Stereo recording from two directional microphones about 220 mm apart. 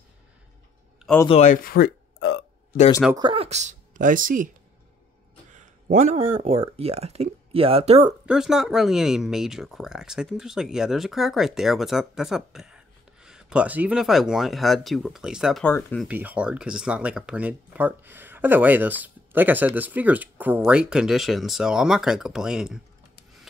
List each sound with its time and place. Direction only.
1.2 s speech: 30° left (ahead or behind)
2.1 s burping: 50° left (ahead or behind)
3.2 s speech: 25° right (ahead or behind)
5.5 s speech: 35° right (ahead or behind)
8.3 s speech: centre (ahead or behind)
16.1 s speech: 5° right (ahead or behind)